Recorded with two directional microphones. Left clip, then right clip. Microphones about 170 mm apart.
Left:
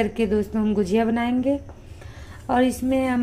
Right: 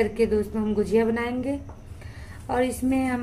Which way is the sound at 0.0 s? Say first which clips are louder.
Even; 30° left (ahead or behind).